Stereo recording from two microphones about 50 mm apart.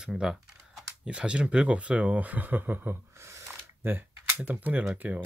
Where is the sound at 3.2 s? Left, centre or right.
Right.